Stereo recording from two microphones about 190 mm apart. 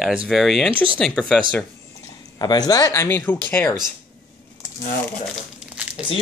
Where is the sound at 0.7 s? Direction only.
25° right (ahead or behind).